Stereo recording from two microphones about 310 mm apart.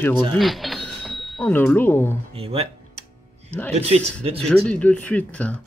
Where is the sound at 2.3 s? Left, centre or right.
Centre.